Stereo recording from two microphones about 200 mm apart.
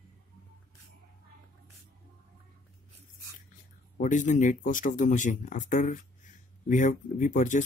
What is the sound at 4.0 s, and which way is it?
Speech, 40° left (ahead or behind).